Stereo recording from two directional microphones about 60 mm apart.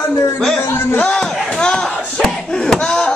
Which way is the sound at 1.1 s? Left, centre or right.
Centre.